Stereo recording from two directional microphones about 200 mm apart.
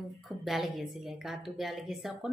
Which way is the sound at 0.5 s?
Centre (ahead or behind).